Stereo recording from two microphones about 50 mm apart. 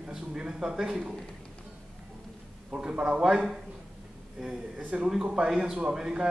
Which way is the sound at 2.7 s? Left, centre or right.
Centre.